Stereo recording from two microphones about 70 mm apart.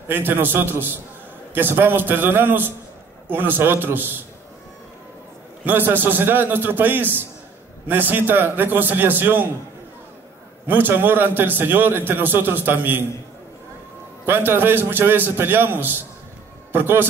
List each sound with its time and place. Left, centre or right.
0.1 s a man's voice: right
5.6 s a man's voice: right
10.7 s a man's voice: right
14.2 s a man's voice: right